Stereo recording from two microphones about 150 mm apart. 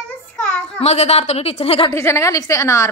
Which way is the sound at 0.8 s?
45° left (ahead or behind).